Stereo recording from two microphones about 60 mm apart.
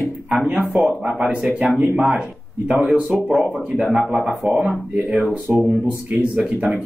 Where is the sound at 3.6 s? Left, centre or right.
Centre.